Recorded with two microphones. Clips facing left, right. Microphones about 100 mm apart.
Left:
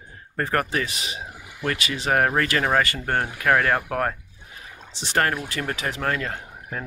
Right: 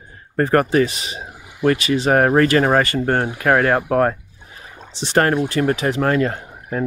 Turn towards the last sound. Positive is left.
turn(degrees=-35)  # may be behind; listen again after turning